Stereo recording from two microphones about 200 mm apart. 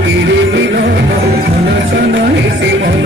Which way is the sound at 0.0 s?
65° right (ahead or behind).